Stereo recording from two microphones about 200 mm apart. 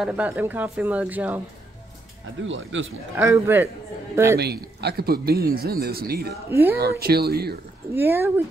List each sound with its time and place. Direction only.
0.0 s speech: 5° right (ahead or behind)
2.4 s speech: 70° right (ahead or behind)
3.2 s speech: 10° right (ahead or behind)
4.4 s speech: 55° right (ahead or behind)
6.5 s speech: 10° right (ahead or behind)
6.8 s speech: 50° right (ahead or behind)
7.9 s speech: 10° right (ahead or behind)